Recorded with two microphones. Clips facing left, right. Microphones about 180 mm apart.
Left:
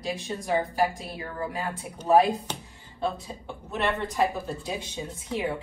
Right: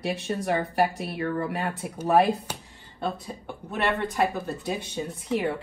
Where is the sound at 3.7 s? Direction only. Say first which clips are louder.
Right 1 dB; 60° right (ahead or behind).